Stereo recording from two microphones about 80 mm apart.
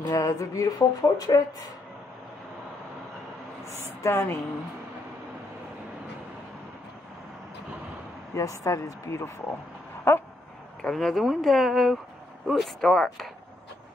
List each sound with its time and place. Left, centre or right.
0.0 s speech: left
3.6 s speech: left
8.4 s speech: left
10.1 s a sound: left
10.8 s speech: centre